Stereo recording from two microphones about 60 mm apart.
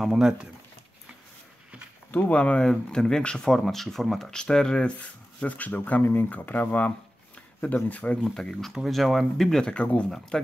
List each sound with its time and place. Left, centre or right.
0.0 s speech: centre
2.0 s speech: left
3.5 s speech: centre
4.9 s speech: left
8.2 s speech: centre